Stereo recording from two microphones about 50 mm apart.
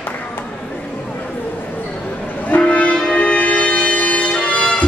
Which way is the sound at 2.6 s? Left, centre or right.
Left.